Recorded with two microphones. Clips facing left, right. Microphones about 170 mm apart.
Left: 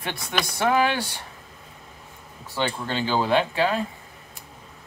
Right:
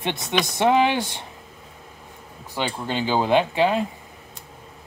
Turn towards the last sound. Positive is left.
turn(degrees=-15)  # may be behind; listen again after turning